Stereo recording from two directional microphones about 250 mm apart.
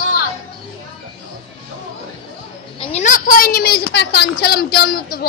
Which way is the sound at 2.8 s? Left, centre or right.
Left.